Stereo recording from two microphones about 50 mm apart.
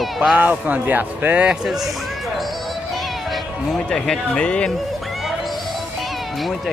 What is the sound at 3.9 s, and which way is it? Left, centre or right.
Speech, centre.